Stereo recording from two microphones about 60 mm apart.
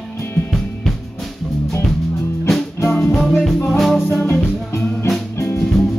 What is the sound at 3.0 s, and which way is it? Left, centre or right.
Music, centre.